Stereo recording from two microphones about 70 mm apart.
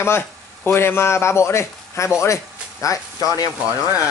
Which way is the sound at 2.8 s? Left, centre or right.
Left.